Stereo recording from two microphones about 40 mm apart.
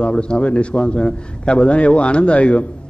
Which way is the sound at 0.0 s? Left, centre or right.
Left.